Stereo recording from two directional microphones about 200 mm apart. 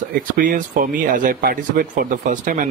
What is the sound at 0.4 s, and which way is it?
Speech, 45° right (ahead or behind).